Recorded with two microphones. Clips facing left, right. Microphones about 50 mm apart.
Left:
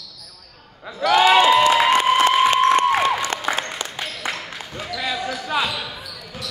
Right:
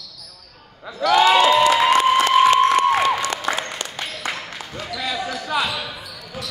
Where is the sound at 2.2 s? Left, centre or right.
Left.